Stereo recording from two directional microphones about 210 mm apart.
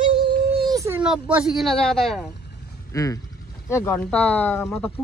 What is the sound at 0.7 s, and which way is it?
Speech, 15° right (ahead or behind).